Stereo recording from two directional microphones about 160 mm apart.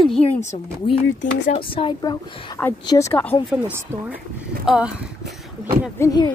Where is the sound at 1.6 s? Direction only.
35° left (ahead or behind).